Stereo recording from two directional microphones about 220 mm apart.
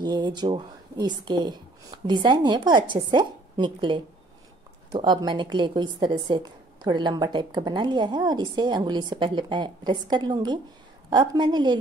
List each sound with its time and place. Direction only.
0.0 s a woman's voice: 20° right (ahead or behind)